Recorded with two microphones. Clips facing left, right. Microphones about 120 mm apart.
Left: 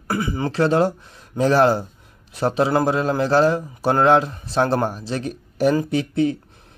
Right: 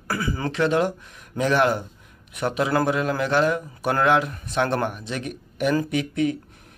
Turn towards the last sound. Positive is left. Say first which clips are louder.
# left 3 dB
turn(degrees=30)  # may be behind; listen again after turning